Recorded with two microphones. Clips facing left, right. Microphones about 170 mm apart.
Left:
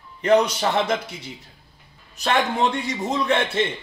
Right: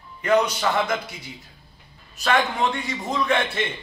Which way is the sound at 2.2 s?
25° left (ahead or behind).